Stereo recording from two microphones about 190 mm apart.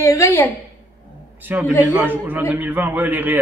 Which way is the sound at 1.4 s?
10° right (ahead or behind).